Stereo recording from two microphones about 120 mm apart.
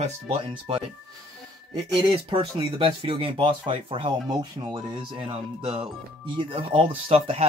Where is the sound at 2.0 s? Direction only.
40° right (ahead or behind).